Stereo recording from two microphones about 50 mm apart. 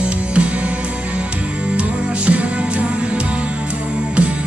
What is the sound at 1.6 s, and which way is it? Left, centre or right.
Music, right.